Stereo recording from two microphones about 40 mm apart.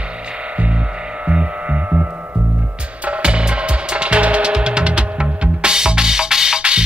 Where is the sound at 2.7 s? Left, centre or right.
Right.